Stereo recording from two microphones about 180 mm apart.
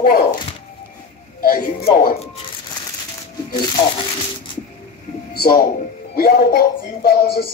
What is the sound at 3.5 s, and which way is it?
Speech, 25° left (ahead or behind).